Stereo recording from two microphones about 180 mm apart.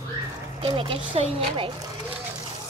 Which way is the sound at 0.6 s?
30° right (ahead or behind).